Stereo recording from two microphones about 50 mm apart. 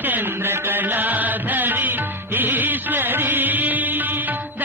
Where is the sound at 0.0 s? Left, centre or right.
Right.